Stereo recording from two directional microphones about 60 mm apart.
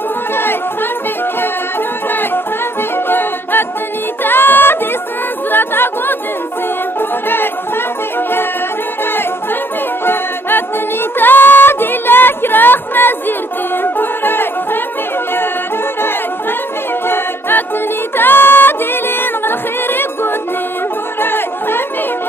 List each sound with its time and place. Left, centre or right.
3.1 s music: left
5.5 s chatter: left
7.0 s music: left
11.1 s music: left
17.1 s music: left